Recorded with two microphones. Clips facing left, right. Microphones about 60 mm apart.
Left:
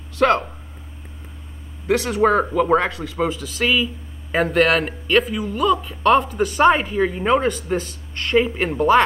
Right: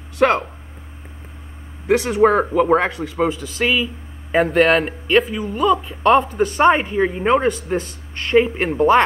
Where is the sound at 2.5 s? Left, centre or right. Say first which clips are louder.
Right 2 dB; centre.